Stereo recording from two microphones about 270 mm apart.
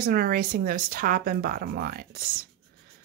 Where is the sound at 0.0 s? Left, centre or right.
Right.